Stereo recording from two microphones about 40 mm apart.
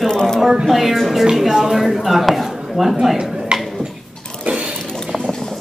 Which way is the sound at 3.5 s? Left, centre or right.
Right.